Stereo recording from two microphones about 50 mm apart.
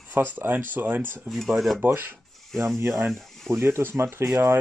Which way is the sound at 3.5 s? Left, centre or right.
Right.